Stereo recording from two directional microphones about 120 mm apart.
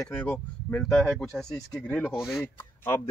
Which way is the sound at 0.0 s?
10° left (ahead or behind).